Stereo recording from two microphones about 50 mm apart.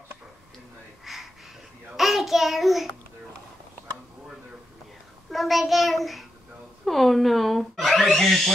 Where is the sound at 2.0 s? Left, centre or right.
Centre.